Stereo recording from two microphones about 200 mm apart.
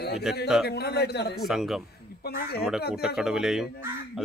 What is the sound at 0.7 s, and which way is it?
Speech, 55° left (ahead or behind).